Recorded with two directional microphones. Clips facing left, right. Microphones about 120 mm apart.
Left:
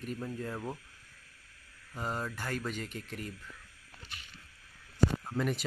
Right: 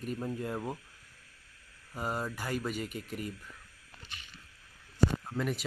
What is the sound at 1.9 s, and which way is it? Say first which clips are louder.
Speech: right 1 dB; 10° right (ahead or behind).